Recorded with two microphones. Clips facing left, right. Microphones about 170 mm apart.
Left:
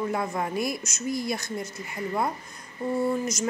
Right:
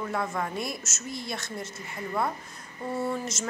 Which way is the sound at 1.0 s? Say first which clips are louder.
Left 8 dB; 25° right (ahead or behind).